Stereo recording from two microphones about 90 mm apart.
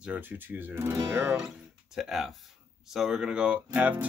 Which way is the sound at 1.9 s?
5° right (ahead or behind).